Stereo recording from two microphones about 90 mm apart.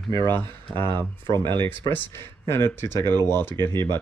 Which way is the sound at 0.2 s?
55° right (ahead or behind).